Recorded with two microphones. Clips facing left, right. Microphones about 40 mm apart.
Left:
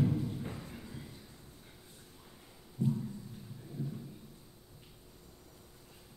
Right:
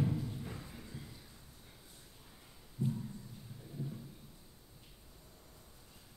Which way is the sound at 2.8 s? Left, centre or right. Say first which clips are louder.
Left 4 dB; left.